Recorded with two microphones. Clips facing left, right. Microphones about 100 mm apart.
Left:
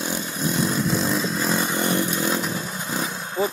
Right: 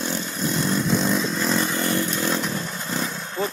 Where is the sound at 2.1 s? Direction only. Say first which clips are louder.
Even; 5° left (ahead or behind).